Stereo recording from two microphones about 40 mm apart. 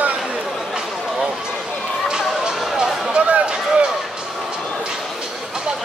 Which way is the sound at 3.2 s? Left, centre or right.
Right.